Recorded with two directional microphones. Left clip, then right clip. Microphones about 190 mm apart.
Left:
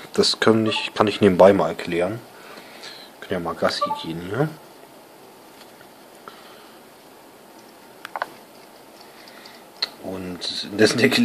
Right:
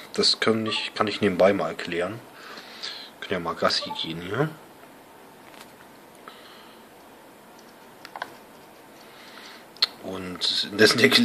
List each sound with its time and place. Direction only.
0.1 s speech: 30° left (ahead or behind)
2.5 s a sound: 10° left (ahead or behind)
9.8 s tick-tock: centre (ahead or behind)